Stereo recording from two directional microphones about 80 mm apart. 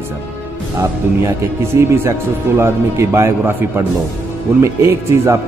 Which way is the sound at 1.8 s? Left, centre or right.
Right.